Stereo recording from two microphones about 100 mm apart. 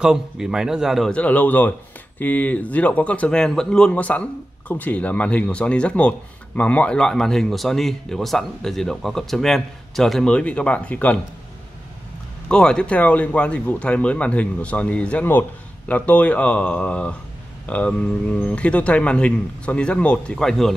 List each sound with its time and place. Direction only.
0.0 s speech: 5° right (ahead or behind)
1.1 s speech: 15° left (ahead or behind)
12.4 s speech: 10° left (ahead or behind)